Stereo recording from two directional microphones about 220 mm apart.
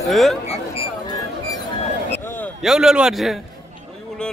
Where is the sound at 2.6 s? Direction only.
Centre (ahead or behind).